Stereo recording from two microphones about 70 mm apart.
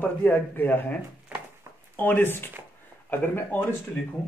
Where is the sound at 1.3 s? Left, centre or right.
Right.